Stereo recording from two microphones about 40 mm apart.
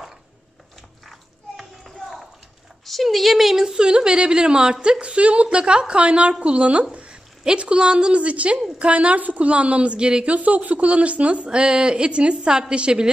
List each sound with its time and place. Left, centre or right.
2.0 s a sound: centre
2.8 s a woman's voice: centre; by 10.3 s right
10.3 s a woman's voice: right